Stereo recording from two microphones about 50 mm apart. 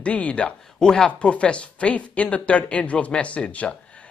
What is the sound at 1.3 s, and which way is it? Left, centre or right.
A man's voice, left.